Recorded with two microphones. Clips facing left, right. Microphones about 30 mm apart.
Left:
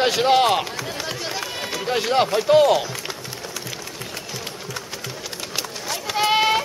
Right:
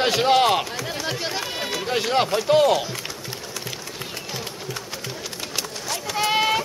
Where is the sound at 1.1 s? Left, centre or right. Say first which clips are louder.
Right 1 dB; centre.